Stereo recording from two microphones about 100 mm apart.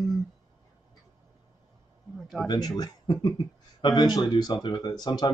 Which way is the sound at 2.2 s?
Centre (ahead or behind).